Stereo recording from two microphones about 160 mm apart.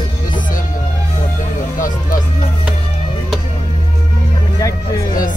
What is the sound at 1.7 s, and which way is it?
Speech, 55° left (ahead or behind).